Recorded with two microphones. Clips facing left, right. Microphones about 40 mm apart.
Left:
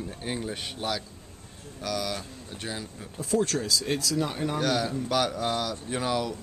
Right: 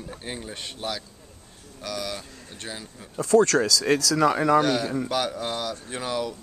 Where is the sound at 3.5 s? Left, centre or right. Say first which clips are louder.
Right 8 dB; right.